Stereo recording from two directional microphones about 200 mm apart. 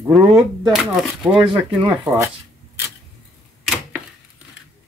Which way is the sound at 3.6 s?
5° right (ahead or behind).